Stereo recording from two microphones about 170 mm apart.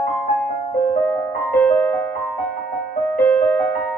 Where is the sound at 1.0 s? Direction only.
5° left (ahead or behind).